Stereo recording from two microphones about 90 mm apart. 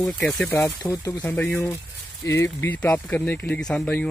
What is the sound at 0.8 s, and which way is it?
Speech, 40° left (ahead or behind).